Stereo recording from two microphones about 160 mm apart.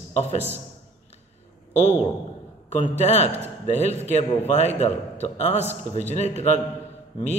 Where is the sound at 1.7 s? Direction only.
40° left (ahead or behind).